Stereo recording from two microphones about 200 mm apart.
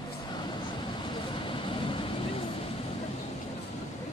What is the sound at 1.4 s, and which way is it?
Vehicle, 25° left (ahead or behind).